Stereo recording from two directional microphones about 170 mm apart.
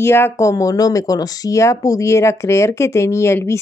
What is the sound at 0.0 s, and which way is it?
Speech, 15° left (ahead or behind).